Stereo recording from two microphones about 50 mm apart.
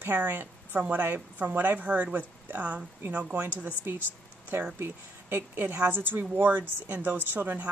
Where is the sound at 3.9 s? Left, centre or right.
Right.